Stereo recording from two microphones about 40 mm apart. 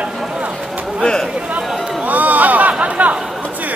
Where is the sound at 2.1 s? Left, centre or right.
Right.